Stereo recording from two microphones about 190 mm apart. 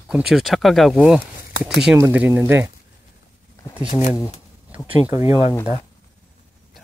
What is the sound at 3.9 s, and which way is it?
Speech, 40° left (ahead or behind).